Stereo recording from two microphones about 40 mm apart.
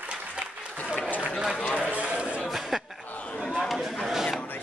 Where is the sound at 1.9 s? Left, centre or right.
Right.